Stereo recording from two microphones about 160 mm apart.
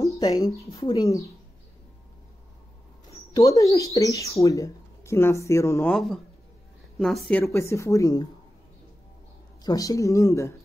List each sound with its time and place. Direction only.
0.0 s a sound: 25° left (ahead or behind)
0.7 s speech: 25° left (ahead or behind)
3.3 s speech: 20° left (ahead or behind)
5.9 s a woman's voice: centre (ahead or behind); by 8.3 s 20° left (ahead or behind)
9.6 s speech: 25° left (ahead or behind)